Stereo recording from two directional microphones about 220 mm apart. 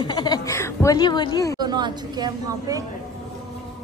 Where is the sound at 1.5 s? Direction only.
20° right (ahead or behind).